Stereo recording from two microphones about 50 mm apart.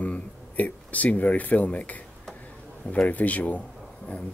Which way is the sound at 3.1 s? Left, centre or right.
Left.